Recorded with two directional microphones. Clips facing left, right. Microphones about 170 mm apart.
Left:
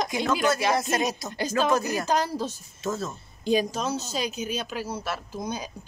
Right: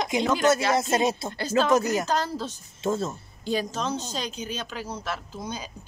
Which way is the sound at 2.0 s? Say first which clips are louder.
Left 2 dB; 15° left (ahead or behind).